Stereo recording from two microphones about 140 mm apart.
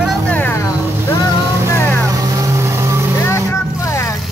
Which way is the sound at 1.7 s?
15° left (ahead or behind).